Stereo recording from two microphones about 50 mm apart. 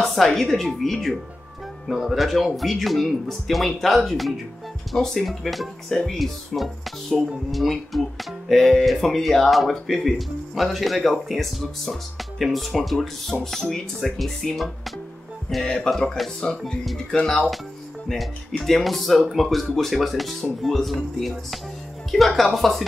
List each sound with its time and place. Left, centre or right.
0.0 s a woman's voice: centre
4.9 s a woman's voice: centre
15.6 s a woman's voice: centre
18.0 s speech: centre